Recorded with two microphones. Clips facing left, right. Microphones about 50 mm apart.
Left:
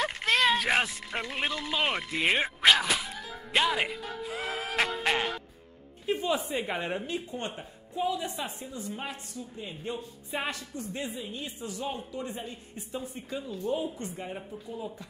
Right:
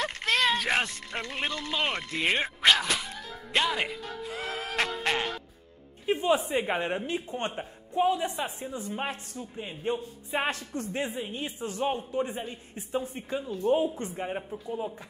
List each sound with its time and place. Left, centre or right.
0.0 s a sound: centre
6.1 s a woman's voice: right
6.5 s speech: centre
7.2 s a woman's voice: right
9.6 s a woman's voice: right
10.5 s speech: right
10.9 s a woman's voice: right